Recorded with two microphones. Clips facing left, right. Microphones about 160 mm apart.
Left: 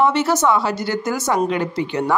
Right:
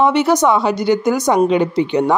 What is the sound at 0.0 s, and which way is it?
A woman's voice, 15° right (ahead or behind).